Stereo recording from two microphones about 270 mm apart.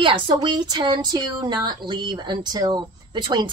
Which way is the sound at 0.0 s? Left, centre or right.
Centre.